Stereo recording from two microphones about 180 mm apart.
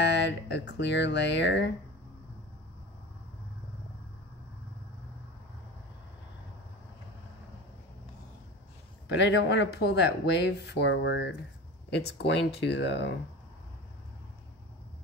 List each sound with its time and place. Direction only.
0.0 s speech: 70° left (ahead or behind)
9.2 s speech: 75° left (ahead or behind)